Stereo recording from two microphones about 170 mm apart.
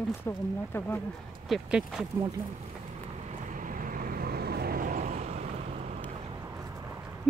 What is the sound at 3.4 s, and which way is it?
Vehicle, 50° right (ahead or behind).